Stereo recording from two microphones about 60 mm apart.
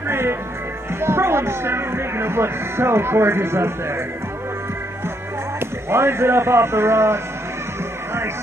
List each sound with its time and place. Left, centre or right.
0.1 s music: right
1.0 s speech: right
5.9 s speech: right